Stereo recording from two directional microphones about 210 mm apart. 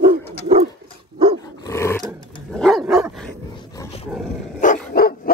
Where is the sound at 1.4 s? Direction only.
15° left (ahead or behind).